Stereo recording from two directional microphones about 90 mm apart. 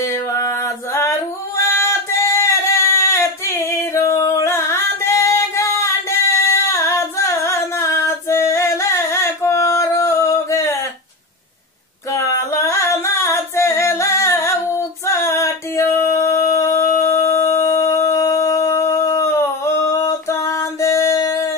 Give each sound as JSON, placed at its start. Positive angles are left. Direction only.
{"t": 0.0, "sound": "music", "side_deg": 30}
{"t": 1.6, "sound": "singing", "side_deg": 30}
{"t": 12.1, "sound": "singing", "side_deg": 35}